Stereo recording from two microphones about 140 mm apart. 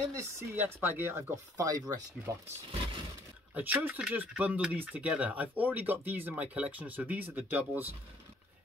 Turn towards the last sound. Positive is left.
turn(degrees=-15)  # may be behind; listen again after turning